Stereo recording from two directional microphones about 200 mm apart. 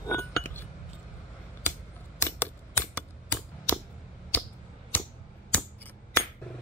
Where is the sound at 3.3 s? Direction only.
10° left (ahead or behind).